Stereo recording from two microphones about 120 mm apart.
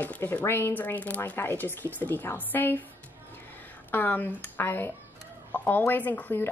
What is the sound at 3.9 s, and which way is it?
A woman's voice, 15° left (ahead or behind).